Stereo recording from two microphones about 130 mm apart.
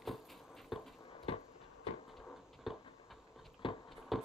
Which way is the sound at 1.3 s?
50° left (ahead or behind).